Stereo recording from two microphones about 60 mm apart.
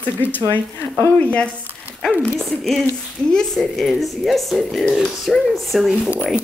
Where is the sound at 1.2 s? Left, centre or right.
Left.